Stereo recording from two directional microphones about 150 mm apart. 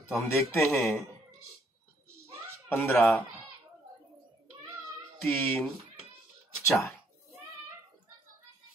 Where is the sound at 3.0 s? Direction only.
Centre (ahead or behind).